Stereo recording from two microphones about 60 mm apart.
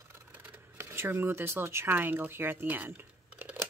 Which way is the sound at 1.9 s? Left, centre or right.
Right.